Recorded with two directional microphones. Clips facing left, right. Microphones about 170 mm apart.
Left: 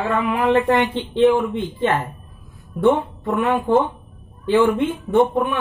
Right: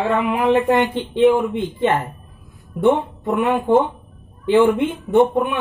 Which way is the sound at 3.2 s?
15° right (ahead or behind).